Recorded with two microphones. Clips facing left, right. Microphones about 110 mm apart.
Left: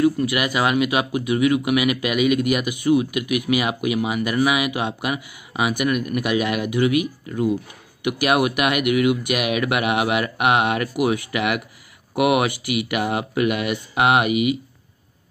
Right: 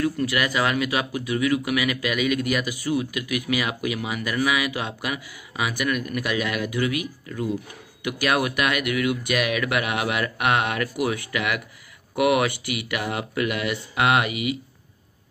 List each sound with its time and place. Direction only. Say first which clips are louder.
0.0 s speech: left 4 dB; 15° left (ahead or behind)